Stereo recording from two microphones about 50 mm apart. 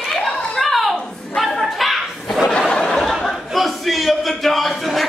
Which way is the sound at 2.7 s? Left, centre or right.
Centre.